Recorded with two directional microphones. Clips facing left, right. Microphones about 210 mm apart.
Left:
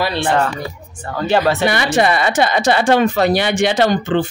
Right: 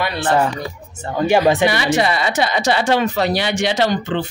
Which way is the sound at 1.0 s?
15° right (ahead or behind).